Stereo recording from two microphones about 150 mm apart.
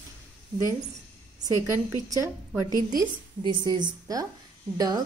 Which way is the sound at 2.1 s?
20° right (ahead or behind).